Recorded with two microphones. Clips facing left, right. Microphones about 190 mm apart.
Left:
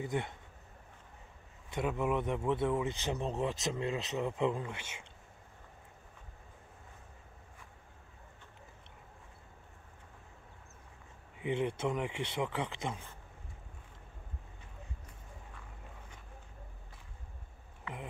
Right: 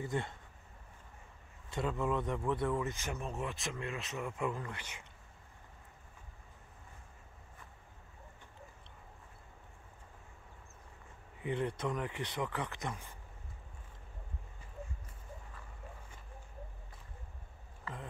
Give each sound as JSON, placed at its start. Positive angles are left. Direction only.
{"t": 0.0, "sound": "speech", "side_deg": 20}
{"t": 1.7, "sound": "speech", "side_deg": 20}
{"t": 4.2, "sound": "speech", "side_deg": 20}
{"t": 11.3, "sound": "speech", "side_deg": 20}